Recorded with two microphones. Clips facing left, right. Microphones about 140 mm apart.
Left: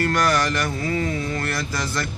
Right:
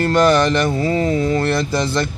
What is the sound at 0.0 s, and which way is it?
Speech, 25° right (ahead or behind).